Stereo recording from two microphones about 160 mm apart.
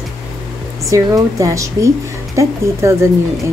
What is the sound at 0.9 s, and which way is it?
A woman's voice, 20° right (ahead or behind).